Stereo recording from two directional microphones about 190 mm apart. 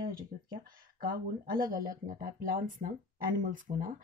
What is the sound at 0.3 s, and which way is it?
Speech, 50° right (ahead or behind).